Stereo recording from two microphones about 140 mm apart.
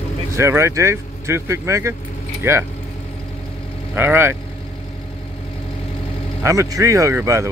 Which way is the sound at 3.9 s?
15° right (ahead or behind).